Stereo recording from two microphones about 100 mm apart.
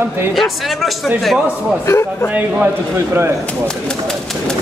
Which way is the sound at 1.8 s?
25° left (ahead or behind).